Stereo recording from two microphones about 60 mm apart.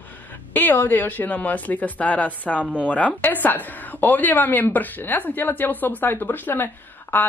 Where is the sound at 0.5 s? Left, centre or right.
Left.